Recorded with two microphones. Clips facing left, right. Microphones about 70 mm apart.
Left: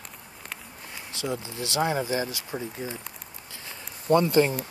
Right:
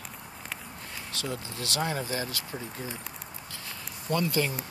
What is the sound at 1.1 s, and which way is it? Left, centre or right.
Speech, centre.